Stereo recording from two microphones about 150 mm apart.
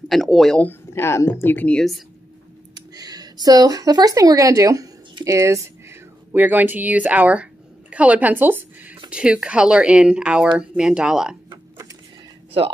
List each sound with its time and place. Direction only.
0.1 s speech: centre (ahead or behind)
2.7 s speech: 25° right (ahead or behind); by 11.3 s 5° right (ahead or behind)